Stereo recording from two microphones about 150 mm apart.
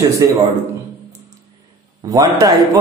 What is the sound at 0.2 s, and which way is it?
Speech, 25° right (ahead or behind).